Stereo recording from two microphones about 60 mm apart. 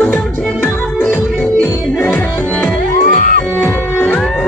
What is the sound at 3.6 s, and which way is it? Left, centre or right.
Music, left.